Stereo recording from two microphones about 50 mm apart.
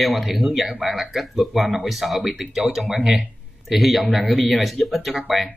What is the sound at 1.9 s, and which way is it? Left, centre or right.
Speech, centre.